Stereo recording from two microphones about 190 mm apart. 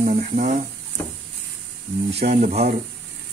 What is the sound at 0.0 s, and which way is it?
Speech, 40° right (ahead or behind).